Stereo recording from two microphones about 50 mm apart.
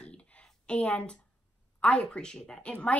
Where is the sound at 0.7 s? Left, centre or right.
Left.